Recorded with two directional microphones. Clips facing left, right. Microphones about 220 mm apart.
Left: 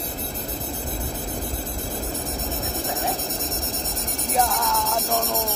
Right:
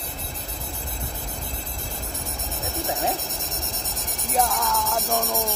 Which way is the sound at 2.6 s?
Centre (ahead or behind).